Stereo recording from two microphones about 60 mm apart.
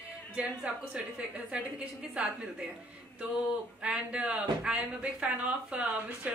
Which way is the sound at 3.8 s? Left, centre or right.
Centre.